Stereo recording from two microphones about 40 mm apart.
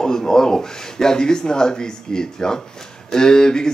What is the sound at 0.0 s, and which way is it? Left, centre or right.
Speech, centre.